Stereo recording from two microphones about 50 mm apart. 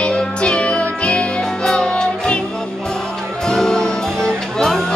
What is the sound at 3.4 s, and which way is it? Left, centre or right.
Music, centre.